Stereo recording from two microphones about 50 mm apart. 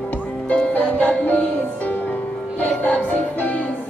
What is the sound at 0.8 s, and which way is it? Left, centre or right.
Music, left.